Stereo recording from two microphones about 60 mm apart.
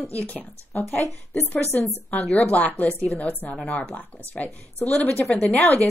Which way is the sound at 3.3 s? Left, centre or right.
Left.